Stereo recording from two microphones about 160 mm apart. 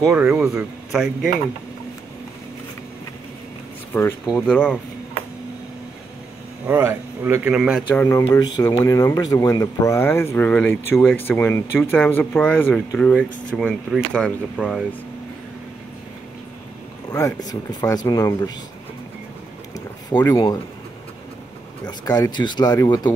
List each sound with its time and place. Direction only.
0.1 s a man's voice: 10° right (ahead or behind)
3.9 s speech: 15° left (ahead or behind)
6.7 s a man's voice: 15° right (ahead or behind)
7.9 s speech: 15° left (ahead or behind)
17.1 s speech: 25° left (ahead or behind)
20.1 s speech: 20° left (ahead or behind)
21.8 s speech: 25° left (ahead or behind)